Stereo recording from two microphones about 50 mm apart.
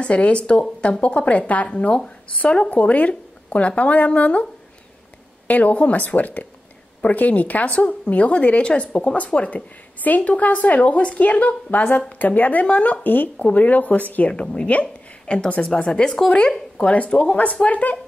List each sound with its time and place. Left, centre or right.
0.0 s a woman's voice: left
2.7 s a woman's voice: left
5.5 s a woman's voice: left
14.7 s a sound: left
15.3 s a woman's voice: left
16.3 s a woman's voice: left